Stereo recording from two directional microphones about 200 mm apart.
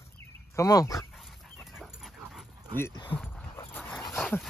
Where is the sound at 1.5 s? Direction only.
Centre (ahead or behind).